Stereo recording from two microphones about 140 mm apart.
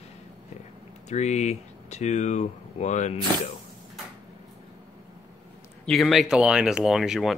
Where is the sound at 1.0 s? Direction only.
55° left (ahead or behind).